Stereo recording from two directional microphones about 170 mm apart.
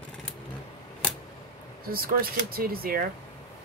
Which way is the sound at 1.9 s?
60° right (ahead or behind).